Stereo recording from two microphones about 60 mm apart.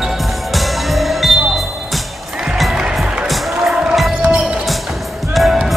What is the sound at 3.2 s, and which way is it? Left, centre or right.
Music, centre.